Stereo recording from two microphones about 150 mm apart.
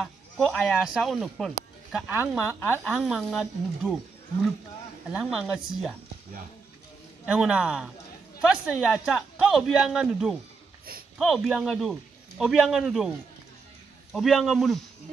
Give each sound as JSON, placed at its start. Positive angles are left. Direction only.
{"t": 0.0, "sound": "speech", "side_deg": 5}
{"t": 5.1, "sound": "speech", "side_deg": -5}
{"t": 7.2, "sound": "speech", "side_deg": -5}
{"t": 14.1, "sound": "speech", "side_deg": 0}